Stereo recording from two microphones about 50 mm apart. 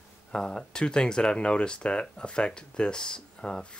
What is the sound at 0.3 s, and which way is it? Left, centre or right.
Speech, centre.